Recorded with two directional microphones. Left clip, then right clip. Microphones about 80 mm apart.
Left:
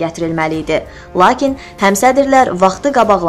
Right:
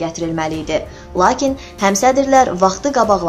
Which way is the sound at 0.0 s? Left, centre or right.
Left.